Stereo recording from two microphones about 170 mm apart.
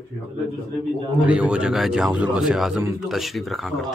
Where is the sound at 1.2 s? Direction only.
10° right (ahead or behind).